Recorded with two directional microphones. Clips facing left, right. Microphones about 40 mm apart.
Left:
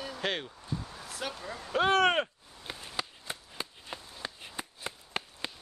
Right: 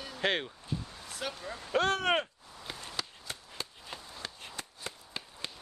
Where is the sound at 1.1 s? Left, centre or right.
Centre.